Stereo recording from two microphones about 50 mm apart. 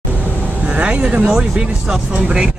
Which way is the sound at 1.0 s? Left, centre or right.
Centre.